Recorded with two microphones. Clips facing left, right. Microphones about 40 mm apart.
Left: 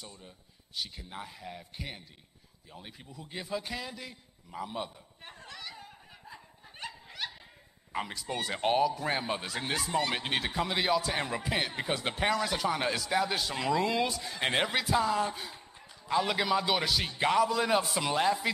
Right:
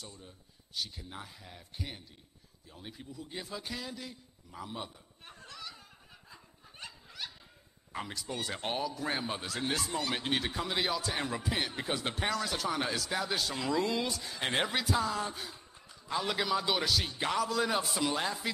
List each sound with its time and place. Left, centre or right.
0.8 s speech: centre
3.2 s speech: centre
5.2 s a sound: left
5.8 s snicker: centre
8.1 s speech: centre
8.6 s speech: centre
10.5 s speech: centre